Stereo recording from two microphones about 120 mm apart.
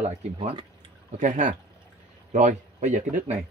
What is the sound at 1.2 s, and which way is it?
A man's voice, 90° right.